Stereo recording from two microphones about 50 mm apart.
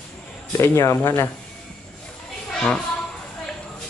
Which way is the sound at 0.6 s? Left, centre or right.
Left.